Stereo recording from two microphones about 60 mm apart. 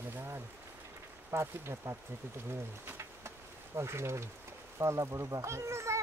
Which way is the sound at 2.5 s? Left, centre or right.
Right.